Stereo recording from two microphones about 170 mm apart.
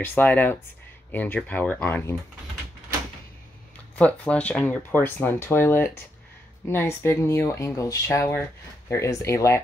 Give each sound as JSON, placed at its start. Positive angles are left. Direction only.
{"t": 0.0, "sound": "speech", "side_deg": 10}
{"t": 3.9, "sound": "speech", "side_deg": 10}